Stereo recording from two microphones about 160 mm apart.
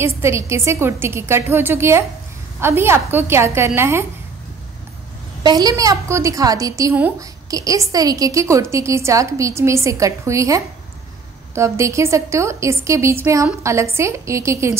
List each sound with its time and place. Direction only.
0.0 s a woman's voice: 15° right (ahead or behind)
5.4 s a woman's voice: 25° right (ahead or behind)